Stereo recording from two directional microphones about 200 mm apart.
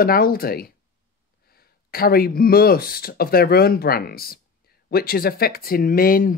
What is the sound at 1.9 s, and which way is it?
Speech, 50° left (ahead or behind).